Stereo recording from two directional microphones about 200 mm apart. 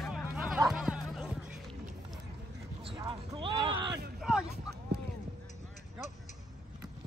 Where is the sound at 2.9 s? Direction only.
20° right (ahead or behind).